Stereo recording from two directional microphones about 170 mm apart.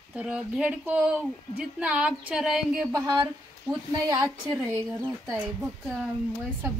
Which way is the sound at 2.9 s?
25° right (ahead or behind).